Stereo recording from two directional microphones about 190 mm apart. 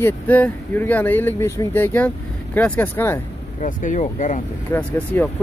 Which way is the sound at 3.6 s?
45° left (ahead or behind).